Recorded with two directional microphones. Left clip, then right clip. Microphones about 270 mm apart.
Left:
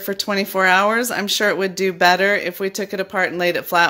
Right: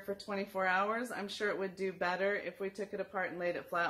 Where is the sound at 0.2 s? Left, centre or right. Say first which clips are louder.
Left 19 dB; left.